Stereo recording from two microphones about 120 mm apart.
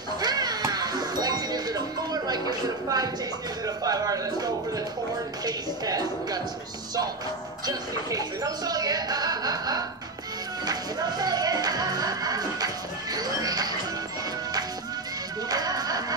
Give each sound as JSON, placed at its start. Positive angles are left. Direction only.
{"t": 0.2, "sound": "music", "side_deg": -35}
{"t": 3.6, "sound": "a sound", "side_deg": -30}
{"t": 5.4, "sound": "a woman's voice", "side_deg": -30}
{"t": 7.6, "sound": "speech", "side_deg": -30}
{"t": 10.6, "sound": "music", "side_deg": -35}
{"t": 15.4, "sound": "music", "side_deg": -30}